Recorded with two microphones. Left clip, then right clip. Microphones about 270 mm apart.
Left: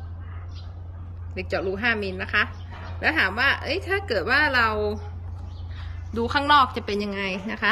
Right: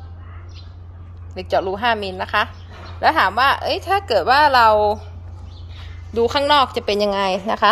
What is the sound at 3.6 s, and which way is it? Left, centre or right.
Speech, right.